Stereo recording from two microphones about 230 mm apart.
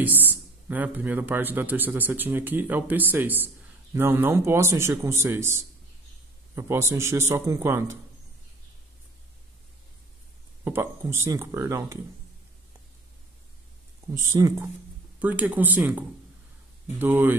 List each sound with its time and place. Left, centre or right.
0.0 s speech: centre
10.6 s speech: centre
14.1 s speech: centre